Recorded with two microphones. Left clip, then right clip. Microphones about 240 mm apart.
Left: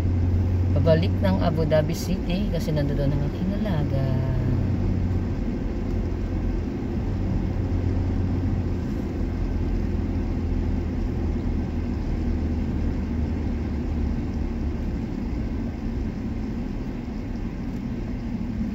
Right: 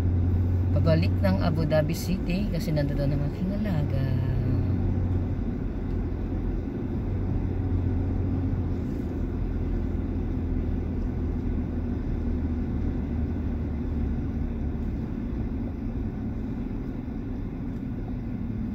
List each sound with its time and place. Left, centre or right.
0.8 s speech: centre